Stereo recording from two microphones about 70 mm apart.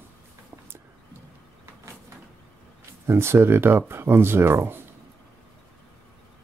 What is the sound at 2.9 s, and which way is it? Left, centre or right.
Speech, right.